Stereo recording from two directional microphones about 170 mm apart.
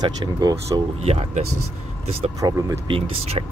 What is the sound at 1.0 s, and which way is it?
Speech, 40° right (ahead or behind).